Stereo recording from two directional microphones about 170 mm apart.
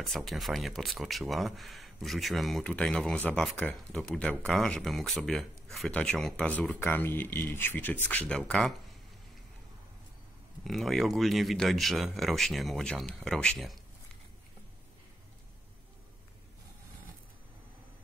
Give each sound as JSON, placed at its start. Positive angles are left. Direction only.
{"t": 0.0, "sound": "speech", "side_deg": 0}
{"t": 10.6, "sound": "speech", "side_deg": 0}